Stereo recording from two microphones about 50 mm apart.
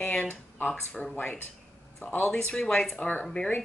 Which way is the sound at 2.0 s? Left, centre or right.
Left.